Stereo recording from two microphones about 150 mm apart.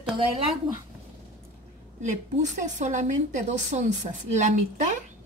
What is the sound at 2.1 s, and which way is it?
A woman's voice, 55° right (ahead or behind).